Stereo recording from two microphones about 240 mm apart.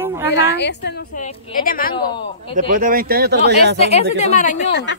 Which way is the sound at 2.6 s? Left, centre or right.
Right.